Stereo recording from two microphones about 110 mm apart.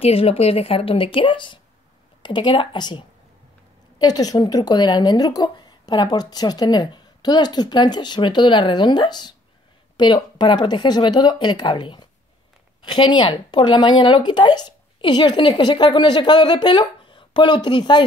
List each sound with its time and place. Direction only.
0.0 s a woman's voice: 65° left (ahead or behind); by 18.0 s 45° left (ahead or behind)